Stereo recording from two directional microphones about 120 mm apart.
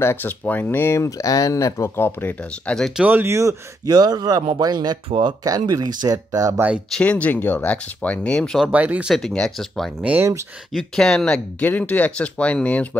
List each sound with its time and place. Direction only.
0.0 s speech: 20° left (ahead or behind)
3.0 s speech: 15° right (ahead or behind)
6.9 s speech: 10° left (ahead or behind)
8.7 s speech: 10° right (ahead or behind)
9.1 s speech: 5° left (ahead or behind)